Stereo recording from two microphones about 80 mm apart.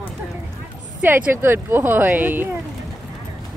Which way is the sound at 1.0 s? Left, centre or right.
Right.